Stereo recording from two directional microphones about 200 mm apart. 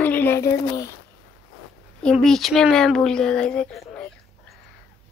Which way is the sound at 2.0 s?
Centre (ahead or behind).